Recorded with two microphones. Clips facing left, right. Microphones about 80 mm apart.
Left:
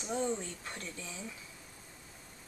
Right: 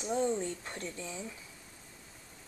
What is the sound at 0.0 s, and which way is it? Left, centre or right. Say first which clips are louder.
Speech: right 3 dB; centre.